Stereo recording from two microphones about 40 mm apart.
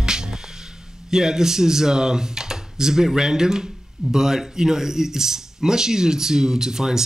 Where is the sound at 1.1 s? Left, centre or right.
Centre.